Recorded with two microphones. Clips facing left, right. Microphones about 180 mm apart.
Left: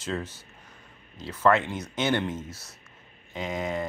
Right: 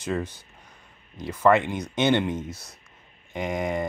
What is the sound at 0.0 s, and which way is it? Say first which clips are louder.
Speech: right 4 dB; 15° right (ahead or behind).